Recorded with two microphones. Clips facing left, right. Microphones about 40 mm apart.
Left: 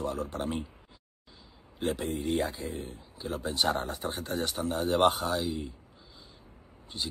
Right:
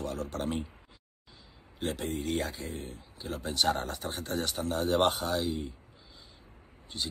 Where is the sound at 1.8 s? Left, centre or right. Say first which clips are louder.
Left 3 dB; centre.